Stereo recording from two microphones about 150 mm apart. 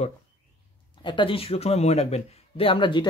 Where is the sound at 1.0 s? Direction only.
35° left (ahead or behind).